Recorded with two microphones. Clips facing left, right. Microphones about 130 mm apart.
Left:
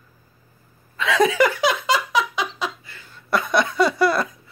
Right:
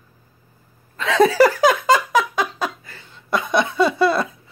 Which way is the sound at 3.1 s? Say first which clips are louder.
Right 1 dB; 20° right (ahead or behind).